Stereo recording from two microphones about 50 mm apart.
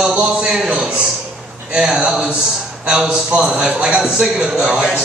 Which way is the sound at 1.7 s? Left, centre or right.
Centre.